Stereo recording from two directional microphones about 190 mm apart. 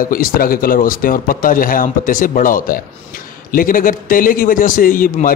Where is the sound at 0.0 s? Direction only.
50° left (ahead or behind).